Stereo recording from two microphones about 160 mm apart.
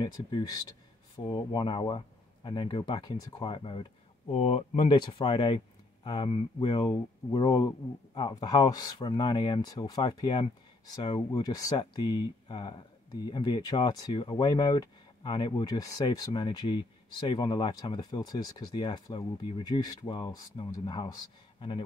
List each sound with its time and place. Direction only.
0.0 s speech: 30° left (ahead or behind)